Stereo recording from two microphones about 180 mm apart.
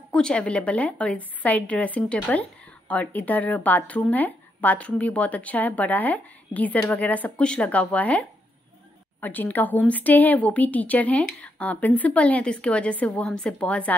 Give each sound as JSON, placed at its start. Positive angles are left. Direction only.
{"t": 0.1, "sound": "speech", "side_deg": 5}